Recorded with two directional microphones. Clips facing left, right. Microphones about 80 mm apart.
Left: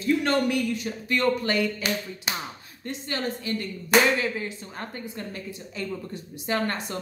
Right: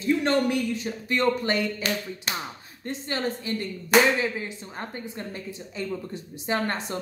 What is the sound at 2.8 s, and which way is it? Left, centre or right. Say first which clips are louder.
Speech: right 1 dB; right.